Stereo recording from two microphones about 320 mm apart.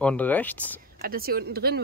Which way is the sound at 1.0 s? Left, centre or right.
Right.